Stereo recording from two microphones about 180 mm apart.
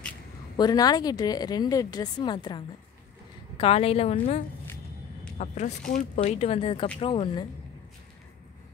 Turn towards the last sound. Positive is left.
turn(degrees=30)  # may be behind; listen again after turning